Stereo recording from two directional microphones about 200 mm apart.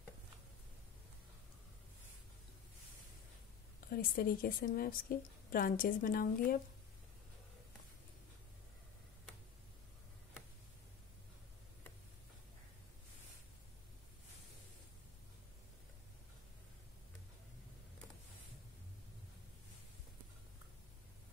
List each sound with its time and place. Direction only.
3.9 s a woman's voice: 45° left (ahead or behind)